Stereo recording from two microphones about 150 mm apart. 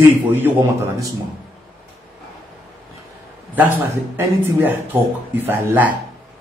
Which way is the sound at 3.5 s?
10° right (ahead or behind).